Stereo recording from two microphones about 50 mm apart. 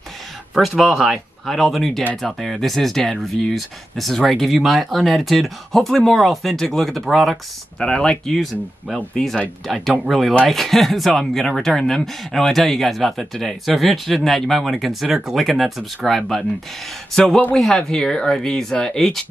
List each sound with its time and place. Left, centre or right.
0.6 s speech: centre
8.0 s speech: centre
17.6 s speech: centre